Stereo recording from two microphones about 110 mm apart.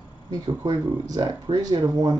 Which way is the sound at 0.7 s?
35° right (ahead or behind).